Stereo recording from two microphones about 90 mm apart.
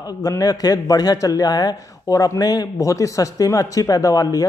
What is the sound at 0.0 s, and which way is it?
A man's voice, 40° left (ahead or behind).